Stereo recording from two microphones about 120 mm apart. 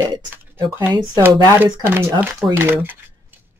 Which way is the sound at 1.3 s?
30° right (ahead or behind).